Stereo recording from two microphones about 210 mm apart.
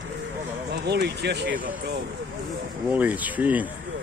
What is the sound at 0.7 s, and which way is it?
Speech, 50° right (ahead or behind).